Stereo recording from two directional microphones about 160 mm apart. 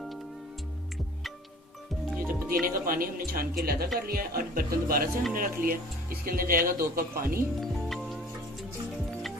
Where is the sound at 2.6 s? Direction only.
65° right (ahead or behind).